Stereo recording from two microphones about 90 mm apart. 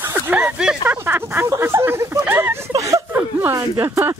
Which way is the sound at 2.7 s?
35° right (ahead or behind).